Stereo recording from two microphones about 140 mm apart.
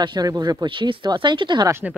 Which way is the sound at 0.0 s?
30° right (ahead or behind).